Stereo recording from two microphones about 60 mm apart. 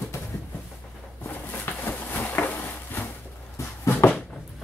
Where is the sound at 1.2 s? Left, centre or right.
Left.